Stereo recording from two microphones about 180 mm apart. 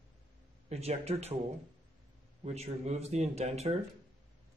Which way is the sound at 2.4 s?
35° right (ahead or behind).